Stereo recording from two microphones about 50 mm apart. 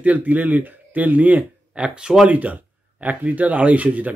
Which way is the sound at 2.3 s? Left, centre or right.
Right.